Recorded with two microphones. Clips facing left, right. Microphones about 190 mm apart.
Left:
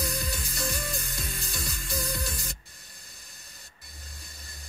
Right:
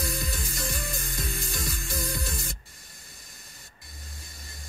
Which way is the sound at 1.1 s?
45° right (ahead or behind).